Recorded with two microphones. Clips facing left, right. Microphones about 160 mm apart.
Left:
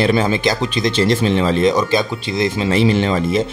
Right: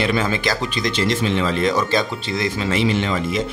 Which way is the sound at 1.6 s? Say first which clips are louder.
Left 4 dB; 15° left (ahead or behind).